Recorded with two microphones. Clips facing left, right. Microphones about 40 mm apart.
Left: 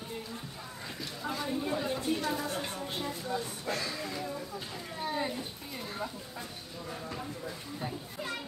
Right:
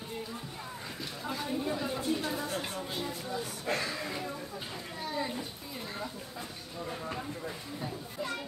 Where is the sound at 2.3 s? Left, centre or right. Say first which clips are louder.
Even; centre.